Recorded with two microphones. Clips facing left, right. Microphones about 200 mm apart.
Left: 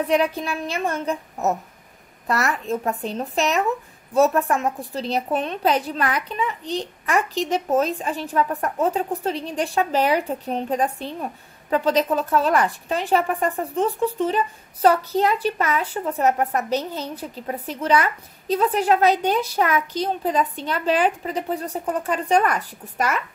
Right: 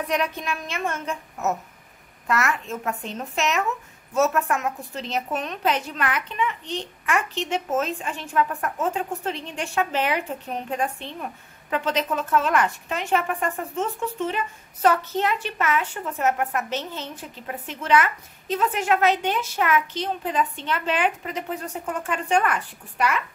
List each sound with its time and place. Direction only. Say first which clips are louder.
0.0 s speech: left 5 dB; 30° left (ahead or behind)